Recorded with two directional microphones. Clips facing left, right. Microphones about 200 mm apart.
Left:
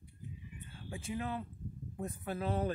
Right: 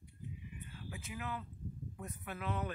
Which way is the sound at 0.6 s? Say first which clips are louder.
Left 5 dB; 30° left (ahead or behind).